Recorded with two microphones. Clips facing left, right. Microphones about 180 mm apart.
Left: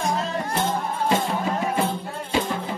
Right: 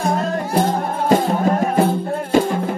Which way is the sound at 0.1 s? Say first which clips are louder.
Right 6 dB; 50° right (ahead or behind).